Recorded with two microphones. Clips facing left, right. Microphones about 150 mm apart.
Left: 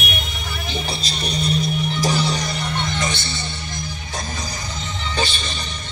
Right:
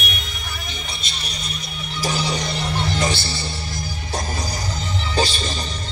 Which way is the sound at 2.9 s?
35° right (ahead or behind).